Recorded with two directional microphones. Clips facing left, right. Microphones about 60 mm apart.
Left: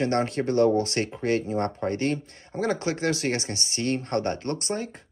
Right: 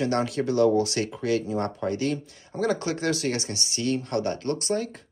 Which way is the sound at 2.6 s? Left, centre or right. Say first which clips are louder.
Even; left.